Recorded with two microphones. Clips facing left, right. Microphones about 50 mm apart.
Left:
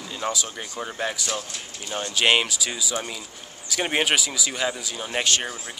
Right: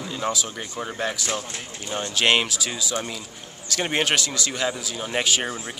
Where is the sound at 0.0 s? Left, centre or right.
Centre.